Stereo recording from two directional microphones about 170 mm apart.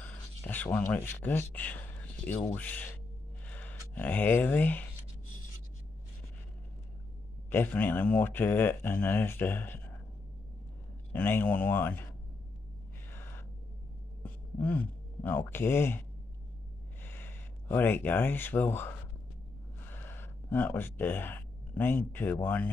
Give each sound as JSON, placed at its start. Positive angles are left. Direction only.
{"t": 0.0, "sound": "speech", "side_deg": 10}
{"t": 7.4, "sound": "speech", "side_deg": 10}
{"t": 11.1, "sound": "speech", "side_deg": 10}
{"t": 13.1, "sound": "gasp", "side_deg": 10}
{"t": 14.2, "sound": "speech", "side_deg": 10}
{"t": 17.0, "sound": "speech", "side_deg": 10}
{"t": 19.9, "sound": "speech", "side_deg": 10}